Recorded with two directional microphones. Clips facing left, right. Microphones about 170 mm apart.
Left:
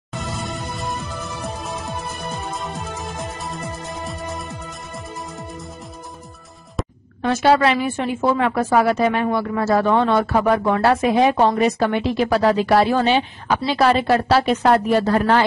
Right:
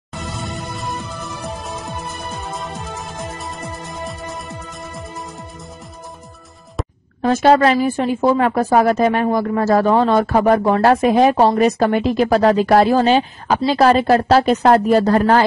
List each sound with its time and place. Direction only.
0.1 s music: centre (ahead or behind)
7.2 s a woman's voice: 40° right (ahead or behind)